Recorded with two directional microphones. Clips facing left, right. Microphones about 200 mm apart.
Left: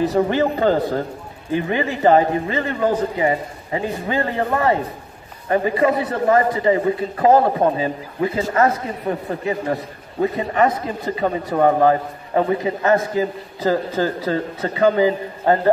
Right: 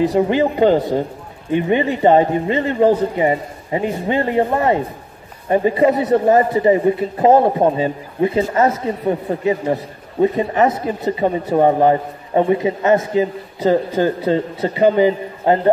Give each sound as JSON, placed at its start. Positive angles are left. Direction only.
{"t": 0.1, "sound": "a man's voice", "side_deg": -15}
{"t": 1.5, "sound": "a man's voice", "side_deg": -25}